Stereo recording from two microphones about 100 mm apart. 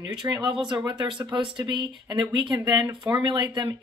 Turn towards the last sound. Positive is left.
turn(degrees=-50)  # may be behind; listen again after turning